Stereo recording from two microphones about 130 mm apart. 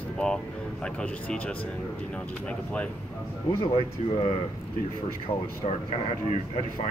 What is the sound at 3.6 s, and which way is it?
Speech, 50° left (ahead or behind).